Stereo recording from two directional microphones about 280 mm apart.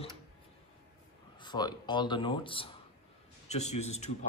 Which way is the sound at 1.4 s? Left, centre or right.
Centre.